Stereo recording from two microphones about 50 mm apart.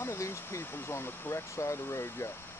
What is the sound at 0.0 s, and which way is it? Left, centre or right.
Speech, left.